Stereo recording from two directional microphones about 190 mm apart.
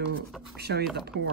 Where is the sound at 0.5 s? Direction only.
60° right (ahead or behind).